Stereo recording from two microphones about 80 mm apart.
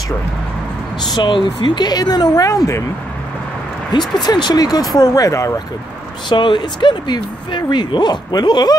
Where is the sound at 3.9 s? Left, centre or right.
Left.